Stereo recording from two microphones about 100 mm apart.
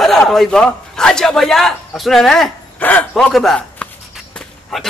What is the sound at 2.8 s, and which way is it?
Speech, 15° left (ahead or behind).